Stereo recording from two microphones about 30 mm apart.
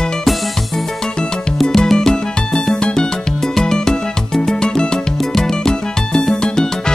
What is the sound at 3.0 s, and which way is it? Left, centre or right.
Music, centre.